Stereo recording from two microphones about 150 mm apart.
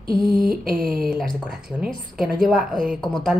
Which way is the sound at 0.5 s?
75° right (ahead or behind).